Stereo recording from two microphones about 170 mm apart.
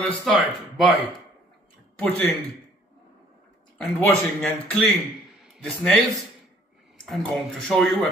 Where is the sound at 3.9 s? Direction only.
10° left (ahead or behind).